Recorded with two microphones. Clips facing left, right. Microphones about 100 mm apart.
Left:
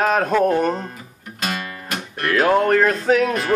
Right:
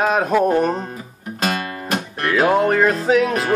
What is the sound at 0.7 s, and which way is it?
Guitar, 35° right (ahead or behind).